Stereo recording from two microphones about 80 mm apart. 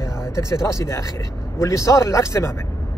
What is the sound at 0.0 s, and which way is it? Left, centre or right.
Speech, left.